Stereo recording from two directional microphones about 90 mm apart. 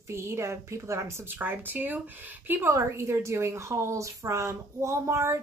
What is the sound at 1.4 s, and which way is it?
Speech, 20° right (ahead or behind).